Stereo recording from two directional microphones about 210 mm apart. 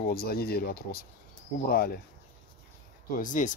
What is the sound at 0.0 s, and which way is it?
Speech, 45° left (ahead or behind).